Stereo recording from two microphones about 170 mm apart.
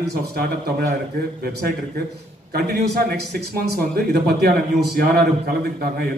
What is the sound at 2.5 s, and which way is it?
A man's voice, 70° right (ahead or behind).